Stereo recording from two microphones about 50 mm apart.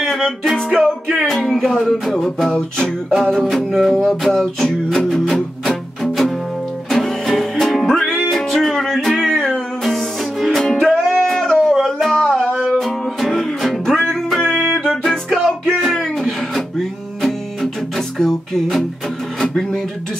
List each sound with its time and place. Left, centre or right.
0.0 s music: centre
2.5 s music: centre
3.3 s music: centre
11.1 s cat: centre
11.4 s music: centre
15.9 s a sound: centre
17.2 s music: centre
19.4 s speech: centre